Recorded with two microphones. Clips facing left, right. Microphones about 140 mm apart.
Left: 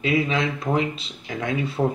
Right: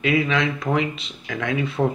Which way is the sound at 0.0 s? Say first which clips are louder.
Right 1 dB; 30° left (ahead or behind).